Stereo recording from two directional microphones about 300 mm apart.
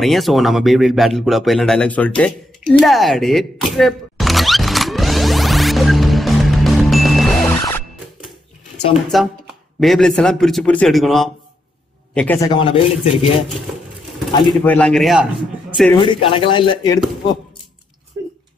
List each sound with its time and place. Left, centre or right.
0.0 s a sound: centre
9.1 s a man's voice: centre
14.3 s a man's voice: centre
14.7 s a man's voice: centre
16.0 s a man's voice: centre
18.1 s a sound: centre